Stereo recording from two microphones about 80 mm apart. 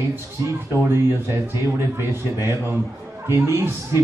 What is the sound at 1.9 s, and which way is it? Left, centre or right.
Speech, right.